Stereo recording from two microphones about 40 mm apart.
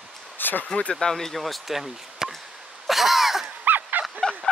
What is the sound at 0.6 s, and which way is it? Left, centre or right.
Speech, left.